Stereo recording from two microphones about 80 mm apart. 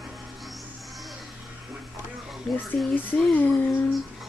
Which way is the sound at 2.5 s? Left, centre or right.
Centre.